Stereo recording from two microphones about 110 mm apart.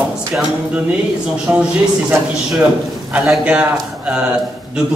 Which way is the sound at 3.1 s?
10° right (ahead or behind).